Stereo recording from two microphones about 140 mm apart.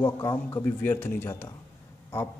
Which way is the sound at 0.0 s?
25° left (ahead or behind).